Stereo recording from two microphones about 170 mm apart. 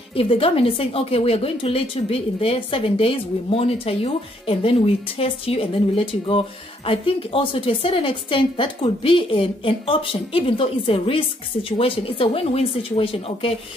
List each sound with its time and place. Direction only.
0.1 s speech: 35° left (ahead or behind)